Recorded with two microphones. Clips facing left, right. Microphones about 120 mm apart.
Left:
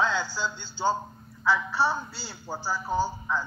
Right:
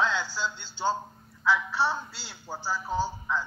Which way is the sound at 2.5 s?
5° left (ahead or behind).